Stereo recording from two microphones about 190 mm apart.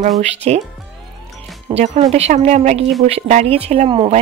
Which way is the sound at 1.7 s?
35° right (ahead or behind).